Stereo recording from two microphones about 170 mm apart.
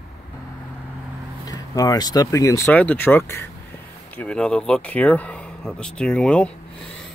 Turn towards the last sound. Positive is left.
turn(degrees=5)  # may be behind; listen again after turning